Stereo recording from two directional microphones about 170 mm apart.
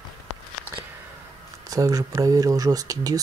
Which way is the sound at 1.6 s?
20° right (ahead or behind).